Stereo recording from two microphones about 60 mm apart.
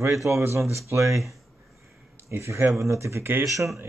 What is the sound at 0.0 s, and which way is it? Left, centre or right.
Speech, right.